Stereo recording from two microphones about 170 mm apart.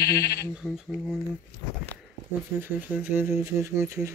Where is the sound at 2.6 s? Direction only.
10° right (ahead or behind).